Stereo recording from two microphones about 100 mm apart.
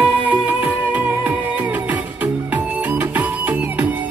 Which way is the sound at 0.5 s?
20° right (ahead or behind).